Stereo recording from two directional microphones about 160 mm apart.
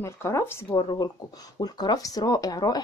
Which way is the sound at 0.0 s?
15° left (ahead or behind).